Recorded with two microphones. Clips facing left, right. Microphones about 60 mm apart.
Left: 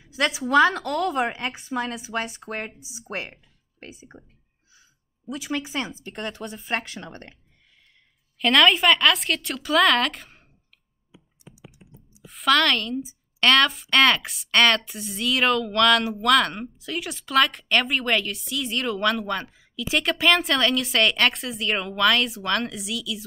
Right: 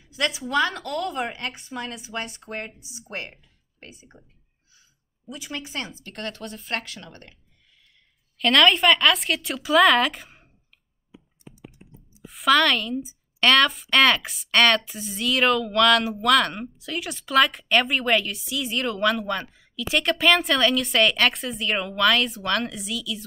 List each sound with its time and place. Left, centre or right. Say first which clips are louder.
0.0 s a sound: left 2 dB; left
0.7 s speech: left 4 dB; left
8.4 s a woman's voice: even; centre
12.3 s a woman's voice: right 1 dB; centre